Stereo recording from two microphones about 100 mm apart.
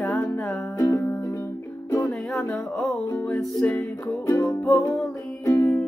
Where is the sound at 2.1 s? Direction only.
5° left (ahead or behind).